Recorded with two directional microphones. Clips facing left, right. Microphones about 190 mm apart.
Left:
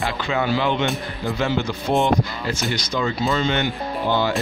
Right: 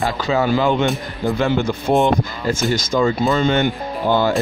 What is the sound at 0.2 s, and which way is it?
Speech, 40° right (ahead or behind).